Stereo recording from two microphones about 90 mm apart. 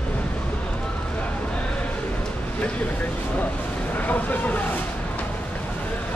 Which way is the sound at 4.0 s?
20° left (ahead or behind).